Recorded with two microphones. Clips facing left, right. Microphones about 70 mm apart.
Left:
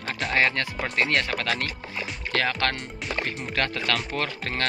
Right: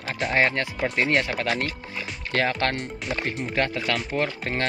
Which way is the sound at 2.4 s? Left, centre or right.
Right.